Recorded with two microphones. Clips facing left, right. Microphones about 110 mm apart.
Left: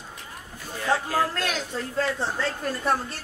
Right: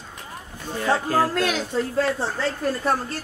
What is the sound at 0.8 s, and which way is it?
Music, 40° right (ahead or behind).